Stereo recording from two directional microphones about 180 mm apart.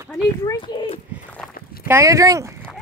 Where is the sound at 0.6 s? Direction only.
30° left (ahead or behind).